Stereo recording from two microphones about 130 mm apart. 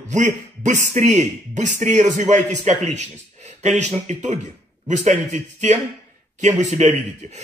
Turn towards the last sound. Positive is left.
turn(degrees=-60)  # may be behind; listen again after turning